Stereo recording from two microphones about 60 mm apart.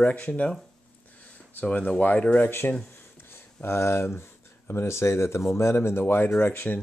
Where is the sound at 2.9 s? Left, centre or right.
Left.